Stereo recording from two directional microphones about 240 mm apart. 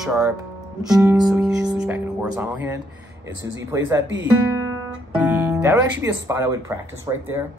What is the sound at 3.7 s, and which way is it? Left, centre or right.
Speech, centre.